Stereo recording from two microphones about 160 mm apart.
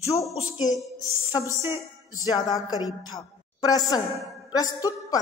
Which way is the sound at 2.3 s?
25° left (ahead or behind).